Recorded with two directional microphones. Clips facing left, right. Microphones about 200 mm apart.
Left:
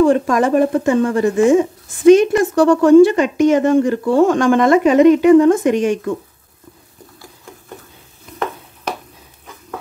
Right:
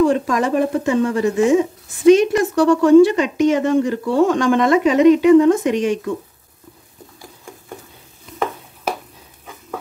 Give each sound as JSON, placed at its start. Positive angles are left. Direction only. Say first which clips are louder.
{"t": 0.1, "sound": "speech", "louder": "left 4 dB", "side_deg": 50}